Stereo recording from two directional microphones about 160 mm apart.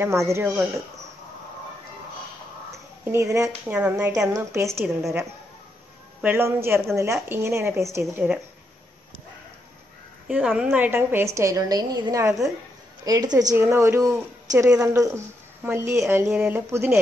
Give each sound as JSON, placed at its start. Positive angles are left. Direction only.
{"t": 0.0, "sound": "a woman's voice", "side_deg": -15}
{"t": 2.7, "sound": "a woman's voice", "side_deg": -20}
{"t": 3.7, "sound": "a woman's voice", "side_deg": -10}
{"t": 4.5, "sound": "a woman's voice", "side_deg": -20}
{"t": 6.2, "sound": "a woman's voice", "side_deg": -15}
{"t": 10.2, "sound": "a woman's voice", "side_deg": -5}
{"t": 14.7, "sound": "a woman's voice", "side_deg": -5}